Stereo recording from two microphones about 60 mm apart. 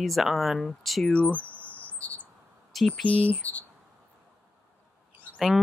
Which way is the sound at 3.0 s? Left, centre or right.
Left.